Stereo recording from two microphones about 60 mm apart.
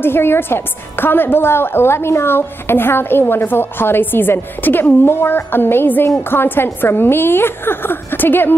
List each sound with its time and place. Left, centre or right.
0.0 s a woman's voice: left